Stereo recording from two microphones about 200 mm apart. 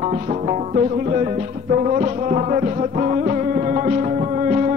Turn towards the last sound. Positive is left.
turn(degrees=-35)  # may be behind; listen again after turning